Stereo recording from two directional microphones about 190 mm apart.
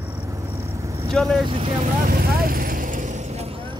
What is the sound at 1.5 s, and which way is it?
Speech, 30° right (ahead or behind).